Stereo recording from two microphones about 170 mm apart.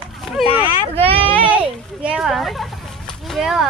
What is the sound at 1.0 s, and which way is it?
Speech, 35° right (ahead or behind).